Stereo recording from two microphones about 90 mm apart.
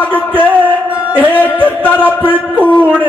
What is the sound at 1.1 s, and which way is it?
Music, 20° right (ahead or behind).